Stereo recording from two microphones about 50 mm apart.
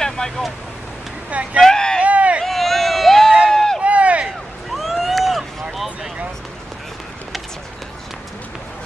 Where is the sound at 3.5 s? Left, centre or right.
Centre.